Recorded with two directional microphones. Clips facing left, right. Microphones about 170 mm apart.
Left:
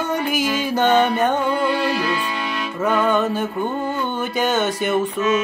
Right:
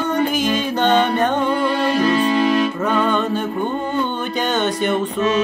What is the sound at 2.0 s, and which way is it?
Music, 30° right (ahead or behind).